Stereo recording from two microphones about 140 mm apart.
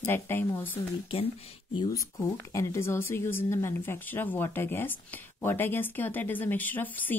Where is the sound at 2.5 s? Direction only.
20° left (ahead or behind).